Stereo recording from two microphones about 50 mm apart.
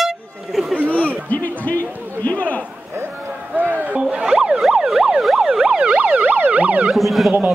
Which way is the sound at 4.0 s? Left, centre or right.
Centre.